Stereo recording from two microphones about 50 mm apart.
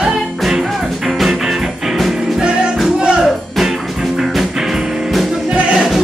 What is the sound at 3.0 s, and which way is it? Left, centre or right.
Music, centre.